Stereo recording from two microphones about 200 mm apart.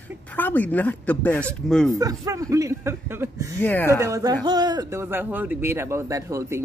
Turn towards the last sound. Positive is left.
turn(degrees=-15)  # may be behind; listen again after turning